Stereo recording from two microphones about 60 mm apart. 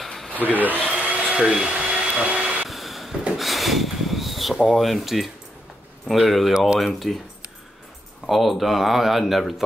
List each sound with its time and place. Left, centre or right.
0.3 s speech: left
0.8 s vacuum cleaner: centre
2.6 s vehicle: centre
3.3 s rub: centre
4.7 s speech: centre
8.3 s speech: centre